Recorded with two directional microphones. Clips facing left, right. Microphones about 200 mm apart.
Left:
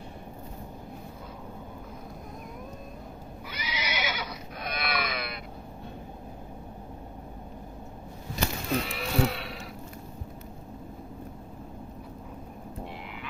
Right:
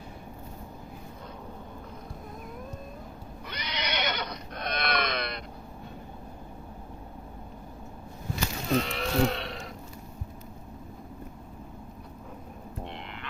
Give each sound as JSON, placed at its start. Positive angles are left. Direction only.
{"t": 3.4, "sound": "neigh", "side_deg": 5}
{"t": 8.7, "sound": "sheep", "side_deg": 5}